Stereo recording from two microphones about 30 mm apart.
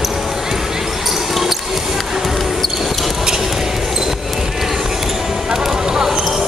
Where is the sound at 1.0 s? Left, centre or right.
Centre.